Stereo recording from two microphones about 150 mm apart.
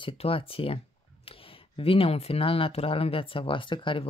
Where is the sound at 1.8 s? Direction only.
40° left (ahead or behind).